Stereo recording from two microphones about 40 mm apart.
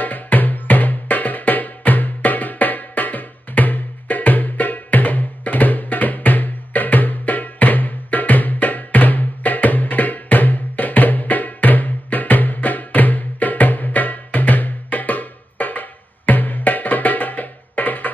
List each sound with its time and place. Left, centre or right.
0.0 s music: left